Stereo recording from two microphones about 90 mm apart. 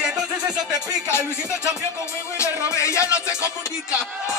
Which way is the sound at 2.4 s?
35° left (ahead or behind).